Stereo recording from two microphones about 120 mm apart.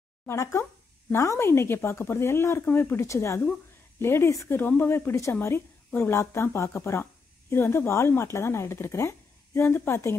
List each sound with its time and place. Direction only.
0.3 s a woman's voice: 25° left (ahead or behind)